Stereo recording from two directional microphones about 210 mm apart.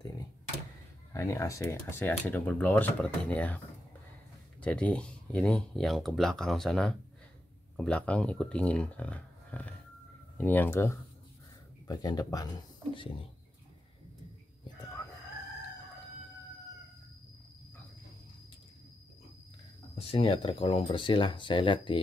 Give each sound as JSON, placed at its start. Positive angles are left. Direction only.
{"t": 1.1, "sound": "speech", "side_deg": 15}
{"t": 20.0, "sound": "speech", "side_deg": 25}